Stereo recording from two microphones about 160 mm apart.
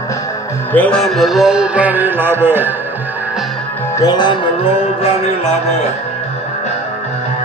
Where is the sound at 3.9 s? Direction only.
25° left (ahead or behind).